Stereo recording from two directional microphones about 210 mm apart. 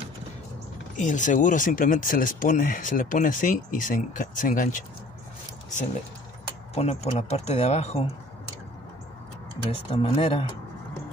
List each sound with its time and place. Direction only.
0.9 s speech: 35° left (ahead or behind)
6.7 s speech: 30° left (ahead or behind)
9.7 s speech: 30° left (ahead or behind)